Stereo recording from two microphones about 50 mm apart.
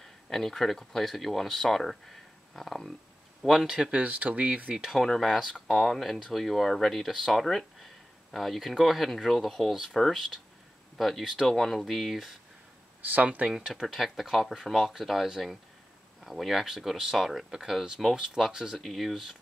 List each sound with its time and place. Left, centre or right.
0.3 s speech: centre
3.6 s speech: centre
3.9 s speech: right
4.9 s speech: centre
13.0 s speech: right
13.5 s speech: centre
18.8 s speech: centre